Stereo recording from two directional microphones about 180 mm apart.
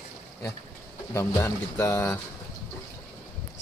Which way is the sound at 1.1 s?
15° left (ahead or behind).